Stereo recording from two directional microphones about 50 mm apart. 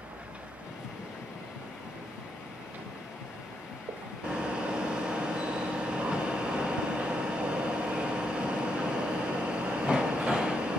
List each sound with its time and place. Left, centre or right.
4.4 s vehicle: right